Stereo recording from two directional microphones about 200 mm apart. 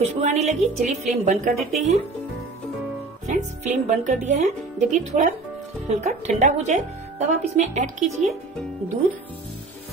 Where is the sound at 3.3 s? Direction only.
40° right (ahead or behind).